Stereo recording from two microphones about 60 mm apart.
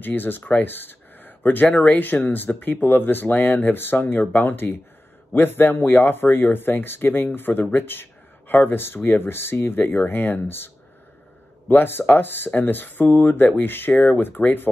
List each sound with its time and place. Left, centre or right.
0.0 s speech: left
11.7 s speech: left